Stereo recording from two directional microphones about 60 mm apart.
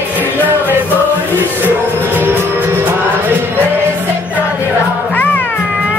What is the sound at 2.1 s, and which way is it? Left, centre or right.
Music, right.